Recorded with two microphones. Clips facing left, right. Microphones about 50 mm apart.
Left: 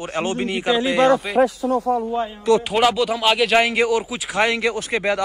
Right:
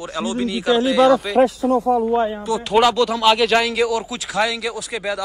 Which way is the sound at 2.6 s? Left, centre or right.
Centre.